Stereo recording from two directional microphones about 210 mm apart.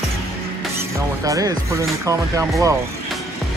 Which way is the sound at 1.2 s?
15° right (ahead or behind).